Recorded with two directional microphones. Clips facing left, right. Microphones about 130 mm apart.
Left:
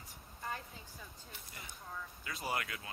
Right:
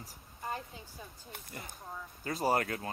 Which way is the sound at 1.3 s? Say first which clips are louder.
Right 6 dB; 50° right (ahead or behind).